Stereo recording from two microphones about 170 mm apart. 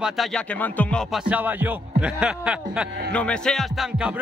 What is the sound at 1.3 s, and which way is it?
Speech, 10° right (ahead or behind).